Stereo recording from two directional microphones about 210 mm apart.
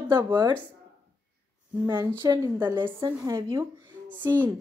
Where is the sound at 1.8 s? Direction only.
15° right (ahead or behind).